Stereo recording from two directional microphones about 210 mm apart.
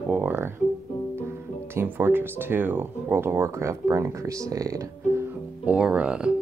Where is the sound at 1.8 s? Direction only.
10° right (ahead or behind).